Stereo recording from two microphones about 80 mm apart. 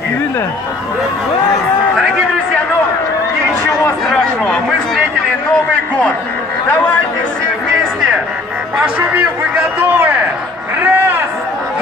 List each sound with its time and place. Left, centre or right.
4.1 s speech: centre
9.9 s music: right
10.8 s a sound: right